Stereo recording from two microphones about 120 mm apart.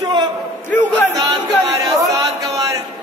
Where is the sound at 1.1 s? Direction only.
30° right (ahead or behind).